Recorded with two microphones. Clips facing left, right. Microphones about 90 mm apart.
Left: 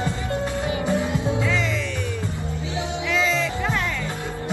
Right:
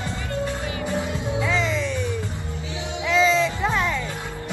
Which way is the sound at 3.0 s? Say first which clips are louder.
Right 5 dB; 20° right (ahead or behind).